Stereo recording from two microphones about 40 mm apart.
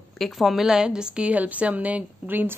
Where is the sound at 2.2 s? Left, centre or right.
Right.